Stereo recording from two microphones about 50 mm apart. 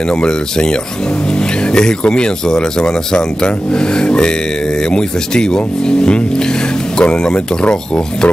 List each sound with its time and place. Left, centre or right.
0.1 s speech: centre